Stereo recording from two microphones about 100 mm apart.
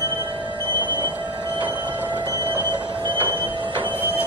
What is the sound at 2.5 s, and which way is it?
Train, 50° right (ahead or behind).